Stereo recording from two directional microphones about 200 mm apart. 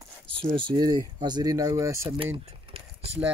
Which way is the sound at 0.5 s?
20° right (ahead or behind).